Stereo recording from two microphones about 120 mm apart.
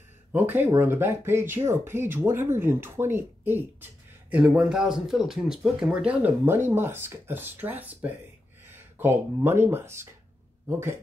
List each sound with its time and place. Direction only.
0.3 s speech: 15° right (ahead or behind)